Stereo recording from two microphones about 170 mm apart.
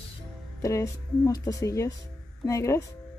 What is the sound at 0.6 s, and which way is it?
Speech, 20° left (ahead or behind).